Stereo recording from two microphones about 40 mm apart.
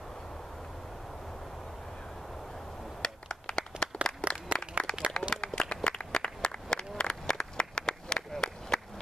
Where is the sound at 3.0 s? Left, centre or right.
Centre.